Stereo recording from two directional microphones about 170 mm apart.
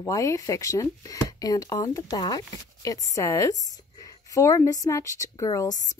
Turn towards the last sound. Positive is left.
turn(degrees=20)  # may be behind; listen again after turning